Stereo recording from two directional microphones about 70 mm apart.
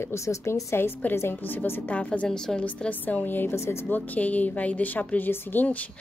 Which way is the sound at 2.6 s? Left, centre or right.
Left.